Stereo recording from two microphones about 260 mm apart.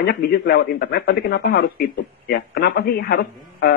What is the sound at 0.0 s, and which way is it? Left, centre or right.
A man's voice, left.